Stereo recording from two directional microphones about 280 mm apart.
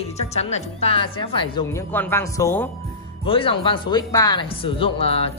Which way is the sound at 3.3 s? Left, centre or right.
Centre.